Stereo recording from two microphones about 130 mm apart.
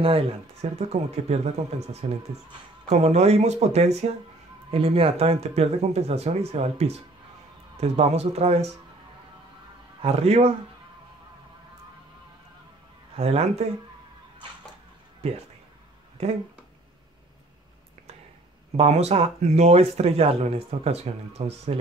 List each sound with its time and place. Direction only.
0.0 s speech: 50° right (ahead or behind)
10.0 s speech: 50° right (ahead or behind)
13.1 s speech: 50° right (ahead or behind)
15.2 s speech: 55° right (ahead or behind)
18.8 s speech: 55° right (ahead or behind)